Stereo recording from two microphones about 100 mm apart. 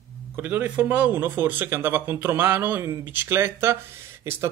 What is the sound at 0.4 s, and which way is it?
Speech, 15° right (ahead or behind).